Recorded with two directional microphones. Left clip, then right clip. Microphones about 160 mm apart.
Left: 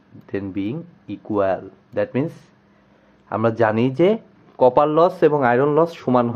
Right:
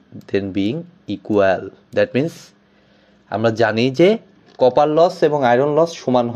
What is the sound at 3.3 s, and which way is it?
Speech, 10° right (ahead or behind).